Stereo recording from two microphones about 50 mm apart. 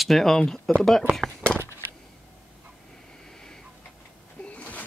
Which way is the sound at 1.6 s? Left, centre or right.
Right.